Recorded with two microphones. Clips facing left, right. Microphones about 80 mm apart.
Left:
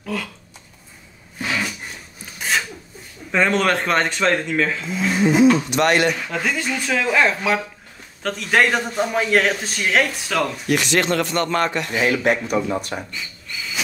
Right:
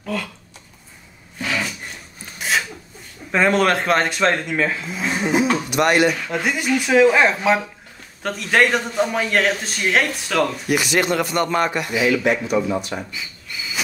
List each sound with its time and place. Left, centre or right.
0.0 s speech: centre
1.4 s a sound: centre
3.3 s a man's voice: centre
8.2 s a man's voice: centre
12.0 s speech: left
13.1 s whistle: centre